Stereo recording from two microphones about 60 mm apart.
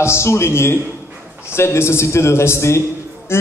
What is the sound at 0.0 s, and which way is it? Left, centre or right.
A man's voice, left.